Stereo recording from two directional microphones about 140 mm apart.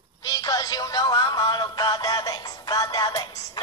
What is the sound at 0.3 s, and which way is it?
Music, 25° left (ahead or behind).